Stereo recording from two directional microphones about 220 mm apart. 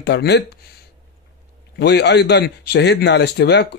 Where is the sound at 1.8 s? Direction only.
50° left (ahead or behind).